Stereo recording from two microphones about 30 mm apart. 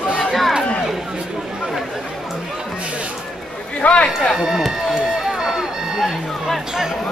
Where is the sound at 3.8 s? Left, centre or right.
Left.